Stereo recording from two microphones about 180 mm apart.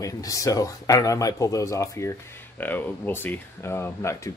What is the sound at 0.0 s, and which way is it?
Speech, 20° left (ahead or behind).